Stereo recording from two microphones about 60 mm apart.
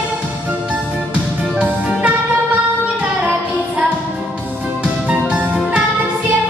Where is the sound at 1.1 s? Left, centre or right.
Centre.